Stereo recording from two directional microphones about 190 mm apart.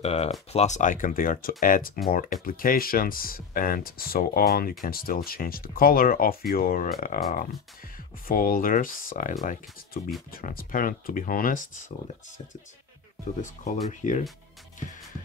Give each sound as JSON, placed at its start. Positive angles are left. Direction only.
{"t": 0.0, "sound": "speech", "side_deg": 35}
{"t": 13.8, "sound": "speech", "side_deg": 40}